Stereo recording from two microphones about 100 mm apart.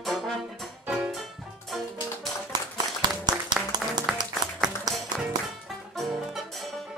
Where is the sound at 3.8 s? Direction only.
15° right (ahead or behind).